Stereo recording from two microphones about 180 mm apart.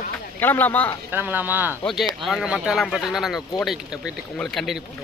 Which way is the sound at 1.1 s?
10° right (ahead or behind).